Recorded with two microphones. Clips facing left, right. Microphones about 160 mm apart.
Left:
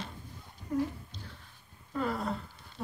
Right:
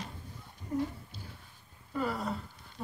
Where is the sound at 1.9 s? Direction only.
Centre (ahead or behind).